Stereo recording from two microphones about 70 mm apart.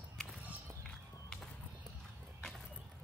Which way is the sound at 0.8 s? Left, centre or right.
Centre.